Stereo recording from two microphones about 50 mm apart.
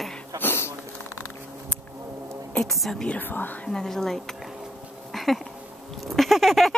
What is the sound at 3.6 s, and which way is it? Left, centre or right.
Speech, centre.